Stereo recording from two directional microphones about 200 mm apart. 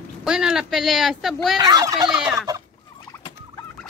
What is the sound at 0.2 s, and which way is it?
A woman's voice, 5° right (ahead or behind).